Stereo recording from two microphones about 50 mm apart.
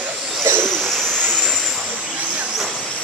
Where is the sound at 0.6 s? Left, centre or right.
Centre.